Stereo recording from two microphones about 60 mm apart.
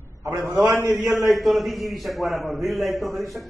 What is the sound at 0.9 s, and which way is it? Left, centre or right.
A man's voice, centre.